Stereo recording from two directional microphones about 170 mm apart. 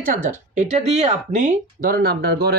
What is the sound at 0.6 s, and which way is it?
Speech, 40° right (ahead or behind).